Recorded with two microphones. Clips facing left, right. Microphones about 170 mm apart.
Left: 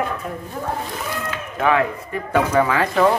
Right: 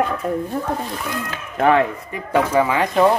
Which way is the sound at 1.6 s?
40° right (ahead or behind).